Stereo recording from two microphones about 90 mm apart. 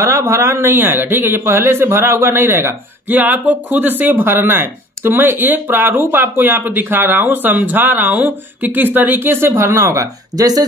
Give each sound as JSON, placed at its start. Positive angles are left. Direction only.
{"t": 0.0, "sound": "speech", "side_deg": -35}